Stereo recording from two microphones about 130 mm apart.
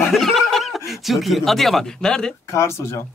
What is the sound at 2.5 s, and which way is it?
Speech, 20° left (ahead or behind).